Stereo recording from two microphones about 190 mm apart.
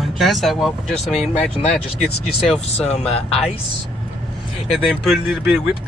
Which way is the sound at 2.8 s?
30° left (ahead or behind).